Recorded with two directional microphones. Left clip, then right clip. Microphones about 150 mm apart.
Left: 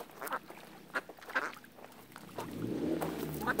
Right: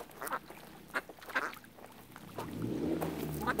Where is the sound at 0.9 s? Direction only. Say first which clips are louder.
Even; 25° right (ahead or behind).